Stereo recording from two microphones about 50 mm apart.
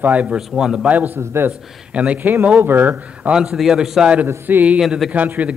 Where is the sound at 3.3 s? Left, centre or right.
Centre.